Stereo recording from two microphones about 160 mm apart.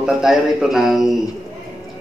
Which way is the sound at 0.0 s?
5° right (ahead or behind).